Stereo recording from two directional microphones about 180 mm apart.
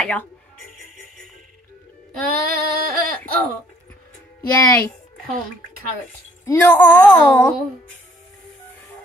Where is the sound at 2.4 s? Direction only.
55° right (ahead or behind).